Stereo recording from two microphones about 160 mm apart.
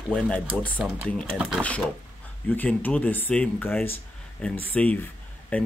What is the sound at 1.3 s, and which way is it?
Speech, 5° right (ahead or behind).